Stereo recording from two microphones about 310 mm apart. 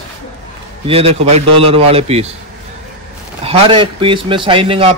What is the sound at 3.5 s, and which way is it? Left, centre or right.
A man's voice, centre.